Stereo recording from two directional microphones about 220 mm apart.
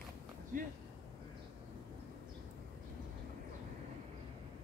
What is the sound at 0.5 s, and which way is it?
Speech, 35° right (ahead or behind).